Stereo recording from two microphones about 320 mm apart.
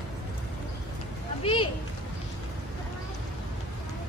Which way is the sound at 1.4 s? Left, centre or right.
Centre.